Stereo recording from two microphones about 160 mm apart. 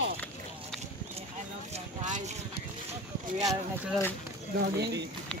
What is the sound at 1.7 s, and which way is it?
Speech, 50° right (ahead or behind).